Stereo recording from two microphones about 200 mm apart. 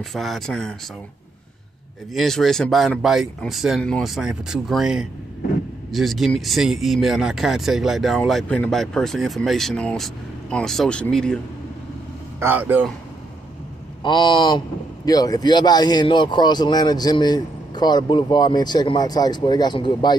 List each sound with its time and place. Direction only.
0.1 s speech: centre (ahead or behind)
2.1 s speech: centre (ahead or behind)
12.4 s speech: 10° right (ahead or behind)
14.0 s speech: 25° left (ahead or behind)